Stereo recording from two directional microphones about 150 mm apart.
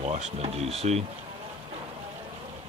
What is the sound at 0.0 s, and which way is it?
Speech, 45° right (ahead or behind).